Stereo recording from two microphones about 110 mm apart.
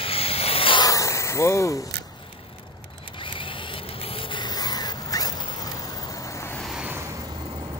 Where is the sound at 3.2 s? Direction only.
50° left (ahead or behind); by 6.5 s 25° left (ahead or behind).